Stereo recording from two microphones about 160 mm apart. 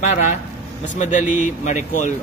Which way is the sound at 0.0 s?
45° left (ahead or behind).